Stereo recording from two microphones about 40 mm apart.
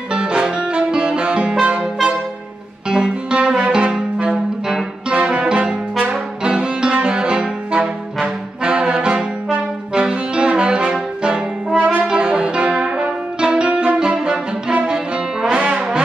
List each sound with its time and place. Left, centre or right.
0.1 s music: right
2.9 s music: right
4.3 s brass instrument: centre
5.1 s brass instrument: right
11.8 s brass instrument: right
12.1 s brass instrument: right
15.5 s brass instrument: right